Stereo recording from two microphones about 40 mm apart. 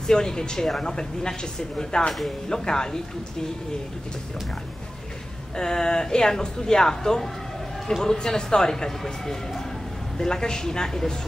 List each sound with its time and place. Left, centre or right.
0.0 s speech: centre
5.6 s speech: centre